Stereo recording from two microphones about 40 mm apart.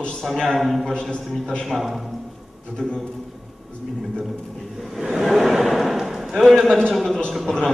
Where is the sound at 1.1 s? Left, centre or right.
Left.